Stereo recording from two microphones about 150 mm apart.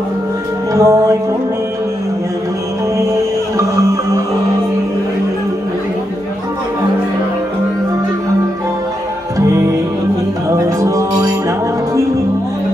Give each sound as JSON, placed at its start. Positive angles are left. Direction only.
{"t": 0.7, "sound": "music", "side_deg": -20}
{"t": 3.5, "sound": "music", "side_deg": -20}
{"t": 9.4, "sound": "music", "side_deg": -20}
{"t": 10.8, "sound": "music", "side_deg": -20}